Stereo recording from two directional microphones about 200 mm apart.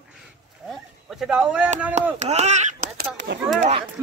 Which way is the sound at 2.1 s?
35° right (ahead or behind).